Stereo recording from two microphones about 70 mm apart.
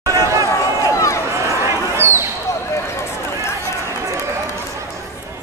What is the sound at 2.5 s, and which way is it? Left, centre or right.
Basketball bounce, left.